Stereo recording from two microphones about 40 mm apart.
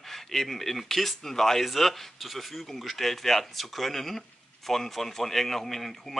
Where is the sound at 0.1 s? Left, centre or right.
Centre.